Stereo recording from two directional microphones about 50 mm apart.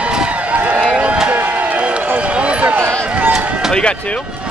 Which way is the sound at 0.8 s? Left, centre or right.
Right.